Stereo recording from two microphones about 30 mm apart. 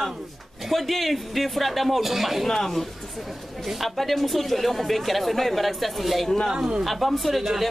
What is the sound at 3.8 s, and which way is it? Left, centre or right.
Speech, centre.